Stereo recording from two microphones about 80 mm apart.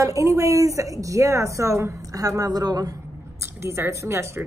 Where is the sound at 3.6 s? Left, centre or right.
Right.